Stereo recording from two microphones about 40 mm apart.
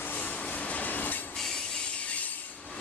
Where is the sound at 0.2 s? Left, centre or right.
Left.